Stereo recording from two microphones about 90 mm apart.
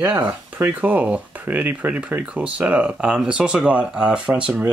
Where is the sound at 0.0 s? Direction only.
15° right (ahead or behind).